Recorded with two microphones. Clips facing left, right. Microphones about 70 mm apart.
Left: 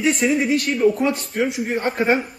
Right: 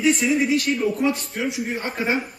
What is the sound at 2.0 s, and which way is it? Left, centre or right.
Speech, left.